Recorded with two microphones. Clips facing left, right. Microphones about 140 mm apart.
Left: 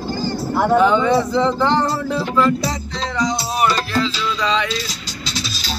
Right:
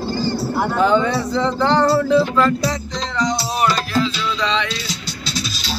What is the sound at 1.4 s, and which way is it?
Music, 35° right (ahead or behind).